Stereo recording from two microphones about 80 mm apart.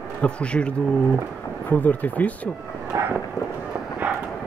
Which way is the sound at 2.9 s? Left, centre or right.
Right.